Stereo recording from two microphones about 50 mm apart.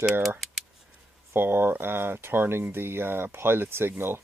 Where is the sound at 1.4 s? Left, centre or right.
Right.